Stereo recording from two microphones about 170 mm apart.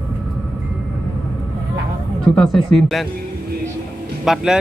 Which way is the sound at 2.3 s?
Centre (ahead or behind).